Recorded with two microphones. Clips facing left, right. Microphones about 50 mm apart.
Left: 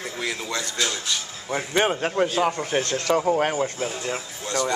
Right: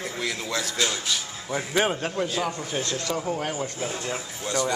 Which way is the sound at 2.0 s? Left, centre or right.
Left.